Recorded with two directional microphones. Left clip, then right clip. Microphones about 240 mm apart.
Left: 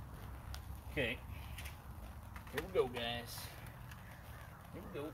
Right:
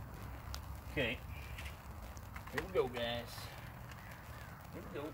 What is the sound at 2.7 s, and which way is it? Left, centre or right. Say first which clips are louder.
Speech: even; left.